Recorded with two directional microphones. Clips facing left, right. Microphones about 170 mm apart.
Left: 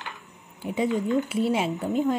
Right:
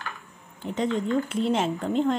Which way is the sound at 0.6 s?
10° left (ahead or behind).